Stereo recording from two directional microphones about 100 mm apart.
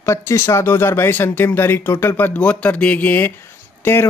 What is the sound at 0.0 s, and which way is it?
Speech, 30° left (ahead or behind).